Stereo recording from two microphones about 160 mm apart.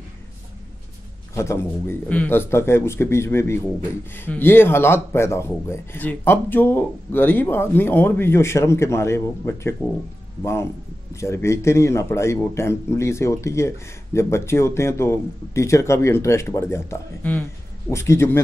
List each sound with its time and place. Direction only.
1.3 s speech: 15° left (ahead or behind)